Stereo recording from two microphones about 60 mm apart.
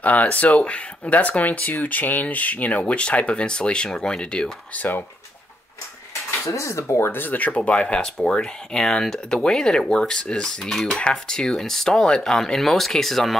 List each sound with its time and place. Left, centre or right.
0.0 s speech: left
6.4 s speech: left; by 13.4 s centre